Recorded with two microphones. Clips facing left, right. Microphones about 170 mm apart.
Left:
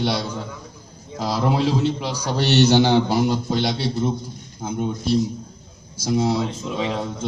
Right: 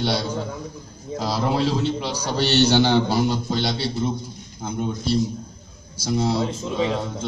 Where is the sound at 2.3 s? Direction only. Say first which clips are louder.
Left 2 dB; 15° left (ahead or behind).